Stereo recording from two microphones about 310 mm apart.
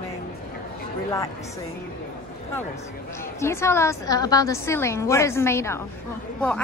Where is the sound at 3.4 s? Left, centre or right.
Centre.